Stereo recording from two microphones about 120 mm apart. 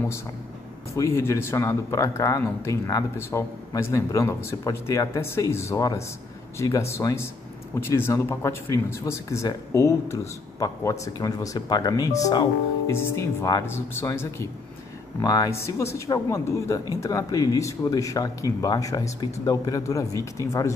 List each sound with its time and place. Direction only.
0.9 s speech: 25° left (ahead or behind)